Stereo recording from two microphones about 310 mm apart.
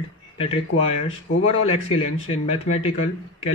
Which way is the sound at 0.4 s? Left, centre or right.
Centre.